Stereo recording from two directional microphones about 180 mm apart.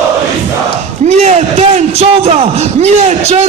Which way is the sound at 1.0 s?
40° right (ahead or behind).